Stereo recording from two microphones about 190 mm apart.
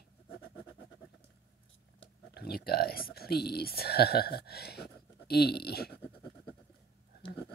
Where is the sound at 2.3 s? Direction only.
55° left (ahead or behind).